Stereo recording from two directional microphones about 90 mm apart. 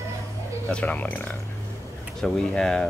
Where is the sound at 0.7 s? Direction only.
15° left (ahead or behind).